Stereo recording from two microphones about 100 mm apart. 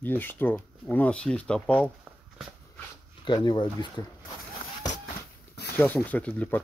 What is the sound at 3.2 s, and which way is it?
Speech, 50° left (ahead or behind).